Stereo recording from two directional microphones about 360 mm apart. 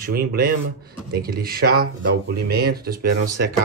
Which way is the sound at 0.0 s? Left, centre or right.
Right.